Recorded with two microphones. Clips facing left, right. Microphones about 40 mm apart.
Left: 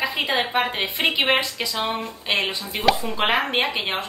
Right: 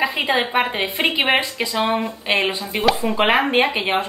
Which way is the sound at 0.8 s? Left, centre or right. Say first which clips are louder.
Right 2 dB; right.